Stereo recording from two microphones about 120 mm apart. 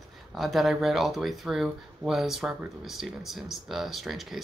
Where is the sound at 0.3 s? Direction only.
Centre (ahead or behind).